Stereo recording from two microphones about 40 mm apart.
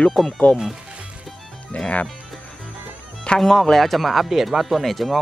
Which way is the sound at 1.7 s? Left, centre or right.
Left.